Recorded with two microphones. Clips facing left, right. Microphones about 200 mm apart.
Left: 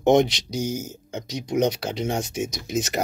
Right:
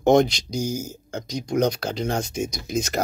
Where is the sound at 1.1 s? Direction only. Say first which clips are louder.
Right 1 dB; 5° left (ahead or behind).